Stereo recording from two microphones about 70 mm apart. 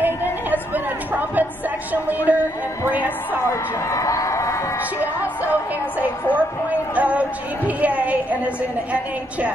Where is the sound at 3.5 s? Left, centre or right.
Left.